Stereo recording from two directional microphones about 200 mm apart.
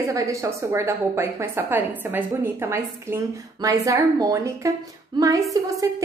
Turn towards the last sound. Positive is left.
turn(degrees=-15)  # may be behind; listen again after turning